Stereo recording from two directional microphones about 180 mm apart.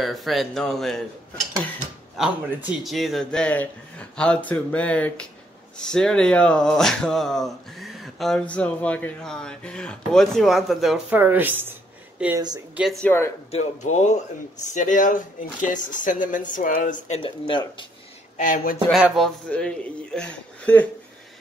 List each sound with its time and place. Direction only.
0.0 s speech: centre (ahead or behind)
2.2 s speech: centre (ahead or behind)
13.0 s speech: 15° left (ahead or behind)
13.5 s speech: 40° left (ahead or behind)
17.2 s speech: 25° left (ahead or behind)
18.4 s speech: 50° left (ahead or behind)
18.9 s speech: centre (ahead or behind)